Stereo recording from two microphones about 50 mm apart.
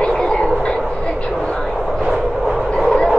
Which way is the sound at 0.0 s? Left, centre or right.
Centre.